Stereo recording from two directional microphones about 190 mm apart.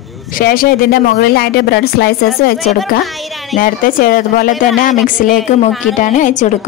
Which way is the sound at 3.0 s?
Centre (ahead or behind).